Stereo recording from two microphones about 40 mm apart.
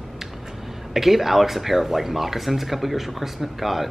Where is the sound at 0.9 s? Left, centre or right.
Centre.